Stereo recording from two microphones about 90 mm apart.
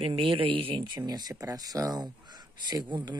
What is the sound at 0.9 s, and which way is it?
Speech, 50° right (ahead or behind).